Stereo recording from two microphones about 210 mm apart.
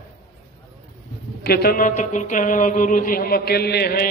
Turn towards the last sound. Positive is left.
turn(degrees=45)  # may be behind; listen again after turning